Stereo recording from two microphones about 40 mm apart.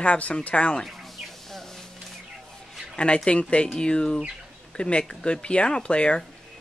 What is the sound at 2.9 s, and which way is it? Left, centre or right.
Speech, left.